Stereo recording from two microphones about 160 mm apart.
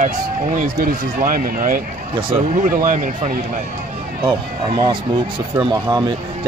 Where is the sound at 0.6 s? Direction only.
60° right (ahead or behind).